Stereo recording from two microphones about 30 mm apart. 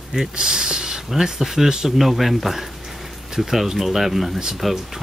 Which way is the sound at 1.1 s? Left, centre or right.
Centre.